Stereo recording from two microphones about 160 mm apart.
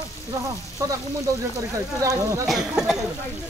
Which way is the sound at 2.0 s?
20° right (ahead or behind).